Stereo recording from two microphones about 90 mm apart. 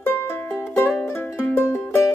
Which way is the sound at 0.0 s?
25° left (ahead or behind).